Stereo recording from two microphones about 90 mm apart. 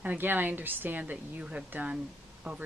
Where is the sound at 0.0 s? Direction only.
20° right (ahead or behind).